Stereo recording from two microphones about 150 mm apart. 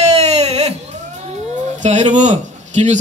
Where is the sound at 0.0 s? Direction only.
45° right (ahead or behind).